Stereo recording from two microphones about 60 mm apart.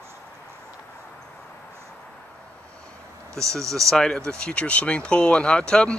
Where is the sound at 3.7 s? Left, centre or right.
Centre.